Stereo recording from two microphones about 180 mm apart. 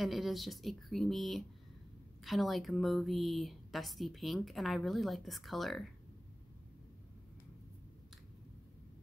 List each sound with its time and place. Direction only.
0.0 s a woman's voice: centre (ahead or behind)